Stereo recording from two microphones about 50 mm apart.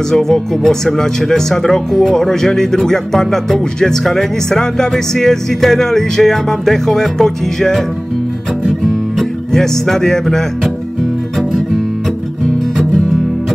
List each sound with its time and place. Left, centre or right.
0.1 s speech: centre
9.5 s speech: centre
11.3 s guitar: centre